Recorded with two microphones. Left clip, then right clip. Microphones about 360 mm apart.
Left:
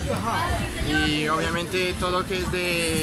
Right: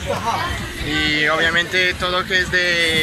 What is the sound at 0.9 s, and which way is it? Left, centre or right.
Speech, centre.